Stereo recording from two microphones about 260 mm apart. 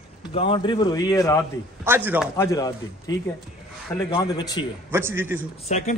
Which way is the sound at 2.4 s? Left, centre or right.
Centre.